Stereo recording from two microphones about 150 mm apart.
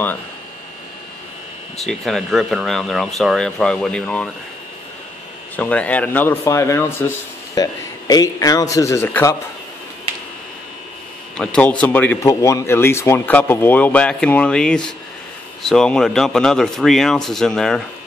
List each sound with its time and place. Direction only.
1.9 s speech: centre (ahead or behind)
5.6 s a man's voice: 10° left (ahead or behind)
11.3 s speech: 5° left (ahead or behind)